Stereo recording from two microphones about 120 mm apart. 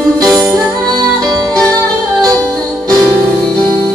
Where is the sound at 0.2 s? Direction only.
30° right (ahead or behind).